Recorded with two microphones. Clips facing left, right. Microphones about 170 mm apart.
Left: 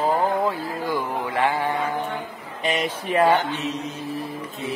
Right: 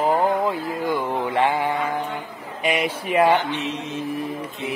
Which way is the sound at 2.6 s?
10° right (ahead or behind).